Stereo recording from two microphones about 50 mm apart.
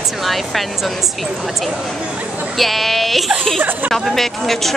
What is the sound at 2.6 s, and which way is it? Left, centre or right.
Speech, centre.